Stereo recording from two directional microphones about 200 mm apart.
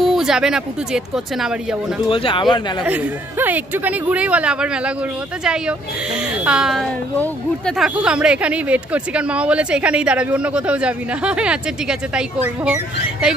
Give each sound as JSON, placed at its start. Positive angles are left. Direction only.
{"t": 0.0, "sound": "speech", "side_deg": 0}
{"t": 2.0, "sound": "speech", "side_deg": 25}
{"t": 2.8, "sound": "speech", "side_deg": -10}